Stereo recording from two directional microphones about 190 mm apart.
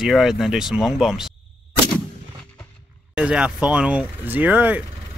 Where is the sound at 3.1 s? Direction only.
5° right (ahead or behind).